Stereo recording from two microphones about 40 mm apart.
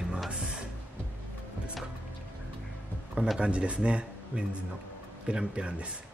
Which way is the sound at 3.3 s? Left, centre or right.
Right.